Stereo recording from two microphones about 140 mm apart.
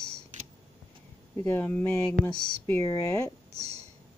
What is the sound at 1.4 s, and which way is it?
Speech, 15° left (ahead or behind).